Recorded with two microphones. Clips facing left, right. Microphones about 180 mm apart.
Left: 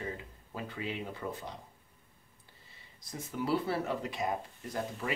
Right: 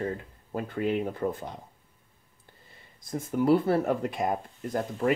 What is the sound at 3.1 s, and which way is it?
Speech, 50° right (ahead or behind).